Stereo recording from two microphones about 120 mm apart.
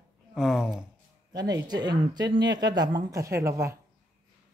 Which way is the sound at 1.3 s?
35° right (ahead or behind).